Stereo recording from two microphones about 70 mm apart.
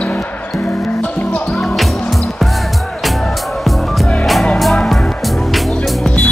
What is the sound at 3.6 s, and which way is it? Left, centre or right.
Music, centre.